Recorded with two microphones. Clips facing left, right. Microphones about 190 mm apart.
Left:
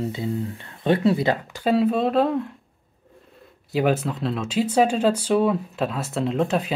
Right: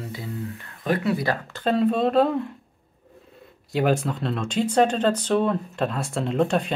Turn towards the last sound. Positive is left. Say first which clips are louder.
# even
turn(degrees=5)  # may be behind; listen again after turning